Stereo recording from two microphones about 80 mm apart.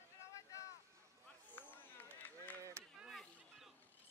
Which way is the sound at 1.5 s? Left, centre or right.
Left.